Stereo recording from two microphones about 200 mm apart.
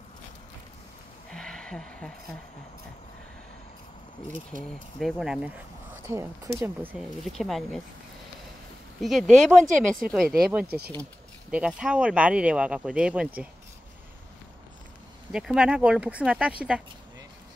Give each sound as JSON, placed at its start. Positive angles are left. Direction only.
{"t": 1.3, "sound": "a sound", "side_deg": 5}
{"t": 4.5, "sound": "speech", "side_deg": -40}
{"t": 4.9, "sound": "speech", "side_deg": 0}
{"t": 6.0, "sound": "speech", "side_deg": -15}
{"t": 9.0, "sound": "speech", "side_deg": 0}
{"t": 15.3, "sound": "speech", "side_deg": -5}